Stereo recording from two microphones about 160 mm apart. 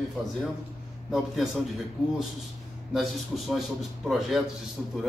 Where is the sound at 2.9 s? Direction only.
Centre (ahead or behind).